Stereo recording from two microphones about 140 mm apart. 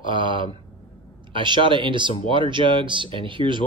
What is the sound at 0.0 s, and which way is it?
Speech, 35° right (ahead or behind).